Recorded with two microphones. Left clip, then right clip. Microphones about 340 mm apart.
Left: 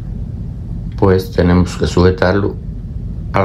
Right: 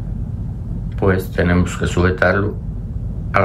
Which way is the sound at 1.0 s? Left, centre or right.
Centre.